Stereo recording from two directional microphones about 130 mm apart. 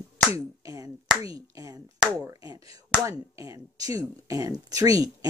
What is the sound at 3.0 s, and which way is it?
Speech, 25° right (ahead or behind).